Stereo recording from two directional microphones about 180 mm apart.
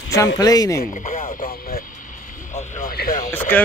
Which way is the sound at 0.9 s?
40° left (ahead or behind).